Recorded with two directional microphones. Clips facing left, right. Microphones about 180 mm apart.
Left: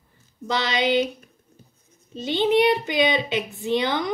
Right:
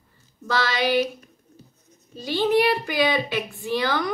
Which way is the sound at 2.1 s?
20° left (ahead or behind).